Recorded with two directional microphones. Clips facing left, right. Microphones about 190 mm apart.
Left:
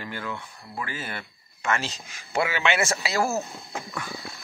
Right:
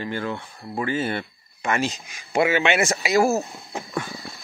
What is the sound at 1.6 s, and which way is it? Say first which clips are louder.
Speech: right 4 dB; 15° right (ahead or behind).